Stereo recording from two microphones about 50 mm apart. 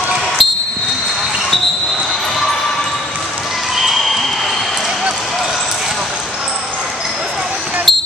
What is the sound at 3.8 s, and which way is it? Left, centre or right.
Basketball bounce, centre.